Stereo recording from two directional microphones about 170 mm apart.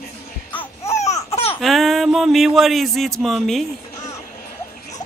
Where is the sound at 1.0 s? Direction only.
40° left (ahead or behind).